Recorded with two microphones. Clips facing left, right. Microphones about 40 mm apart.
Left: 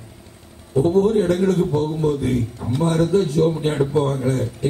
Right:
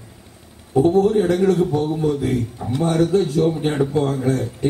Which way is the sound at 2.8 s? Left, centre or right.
Right.